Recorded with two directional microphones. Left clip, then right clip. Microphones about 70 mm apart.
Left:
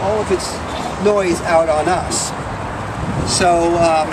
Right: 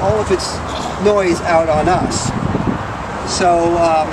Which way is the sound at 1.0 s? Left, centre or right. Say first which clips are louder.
Right 2 dB; right.